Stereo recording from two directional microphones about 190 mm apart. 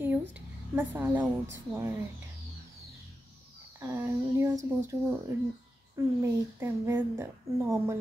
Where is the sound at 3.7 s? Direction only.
15° right (ahead or behind).